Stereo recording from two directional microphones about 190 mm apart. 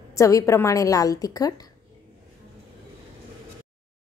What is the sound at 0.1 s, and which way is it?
A woman's voice, 15° left (ahead or behind).